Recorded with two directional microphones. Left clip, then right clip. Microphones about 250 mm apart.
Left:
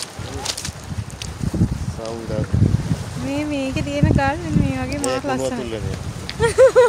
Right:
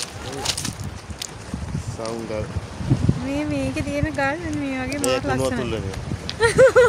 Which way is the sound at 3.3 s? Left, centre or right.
Centre.